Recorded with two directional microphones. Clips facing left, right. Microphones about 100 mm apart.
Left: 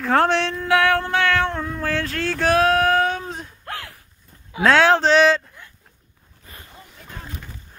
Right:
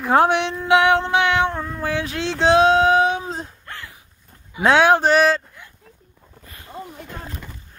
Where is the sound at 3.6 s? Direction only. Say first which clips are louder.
Left 4 dB; 65° left (ahead or behind).